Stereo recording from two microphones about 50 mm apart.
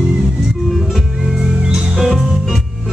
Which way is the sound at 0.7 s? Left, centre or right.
Centre.